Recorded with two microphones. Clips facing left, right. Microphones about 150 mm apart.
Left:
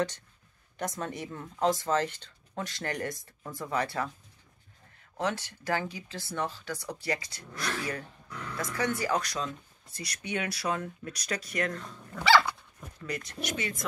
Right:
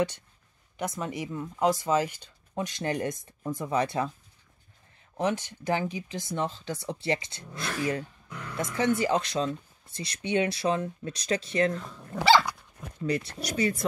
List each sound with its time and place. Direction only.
0.7 s speech: 10° right (ahead or behind)
5.1 s speech: 20° right (ahead or behind); by 13.8 s 35° right (ahead or behind)